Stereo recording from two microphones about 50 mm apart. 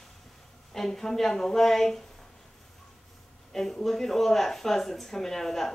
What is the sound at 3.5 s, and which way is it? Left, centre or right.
Speech, centre.